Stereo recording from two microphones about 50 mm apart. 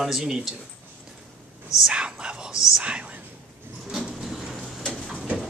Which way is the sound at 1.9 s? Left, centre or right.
Centre.